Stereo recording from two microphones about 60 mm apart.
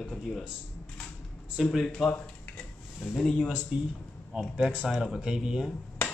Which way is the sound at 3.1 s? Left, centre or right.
Centre.